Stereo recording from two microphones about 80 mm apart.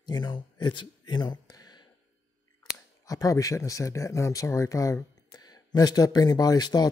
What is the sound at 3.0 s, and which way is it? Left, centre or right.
Speech, left.